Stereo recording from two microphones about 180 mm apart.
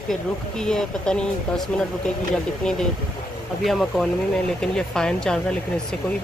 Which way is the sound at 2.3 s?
5° left (ahead or behind).